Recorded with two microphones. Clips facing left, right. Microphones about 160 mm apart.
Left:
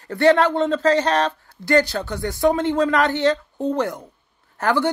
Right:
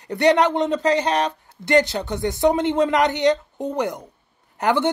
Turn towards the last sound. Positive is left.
turn(degrees=-20)  # may be behind; listen again after turning